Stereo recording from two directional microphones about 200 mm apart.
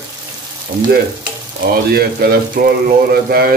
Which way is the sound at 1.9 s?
50° right (ahead or behind).